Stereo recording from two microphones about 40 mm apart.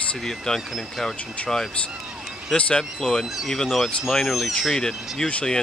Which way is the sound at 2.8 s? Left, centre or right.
Centre.